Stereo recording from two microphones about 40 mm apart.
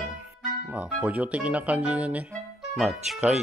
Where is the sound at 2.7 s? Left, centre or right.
Centre.